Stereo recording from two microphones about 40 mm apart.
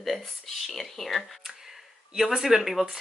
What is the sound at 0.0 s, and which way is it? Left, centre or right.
A woman's voice, centre.